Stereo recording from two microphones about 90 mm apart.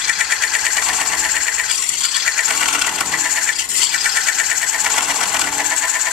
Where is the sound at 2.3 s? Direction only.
5° right (ahead or behind).